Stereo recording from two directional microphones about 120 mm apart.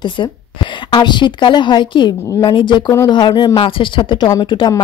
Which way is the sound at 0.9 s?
40° left (ahead or behind).